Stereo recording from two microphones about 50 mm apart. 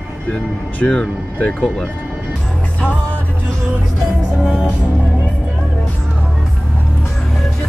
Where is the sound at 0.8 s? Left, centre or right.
Left.